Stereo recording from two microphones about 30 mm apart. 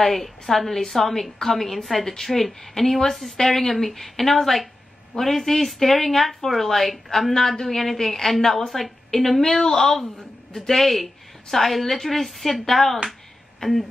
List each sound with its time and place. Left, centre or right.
0.1 s a woman's voice: centre
7.3 s a woman's voice: centre
7.6 s a woman's voice: centre